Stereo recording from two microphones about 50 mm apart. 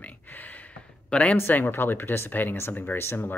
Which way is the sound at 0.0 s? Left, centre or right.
Left.